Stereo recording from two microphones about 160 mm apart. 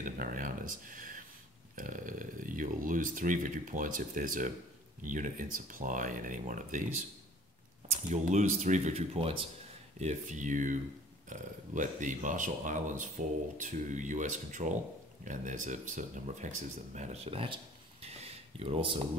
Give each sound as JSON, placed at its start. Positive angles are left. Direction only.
{"t": 0.0, "sound": "speech", "side_deg": -55}
{"t": 8.1, "sound": "speech", "side_deg": -45}
{"t": 9.9, "sound": "speech", "side_deg": -50}